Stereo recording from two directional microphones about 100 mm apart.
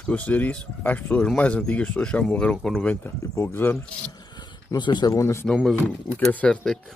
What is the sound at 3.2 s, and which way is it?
Speech, 30° left (ahead or behind).